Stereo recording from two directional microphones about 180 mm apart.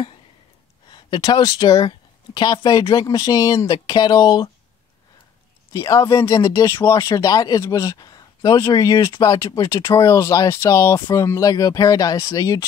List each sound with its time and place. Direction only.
0.9 s speech: 25° left (ahead or behind)
5.7 s speech: 20° left (ahead or behind)